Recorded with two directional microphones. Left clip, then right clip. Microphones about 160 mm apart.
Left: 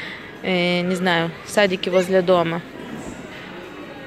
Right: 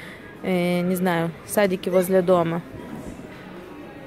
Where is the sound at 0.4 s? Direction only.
15° right (ahead or behind).